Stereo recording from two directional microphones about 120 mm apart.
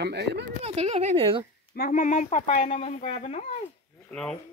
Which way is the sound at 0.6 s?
65° right (ahead or behind).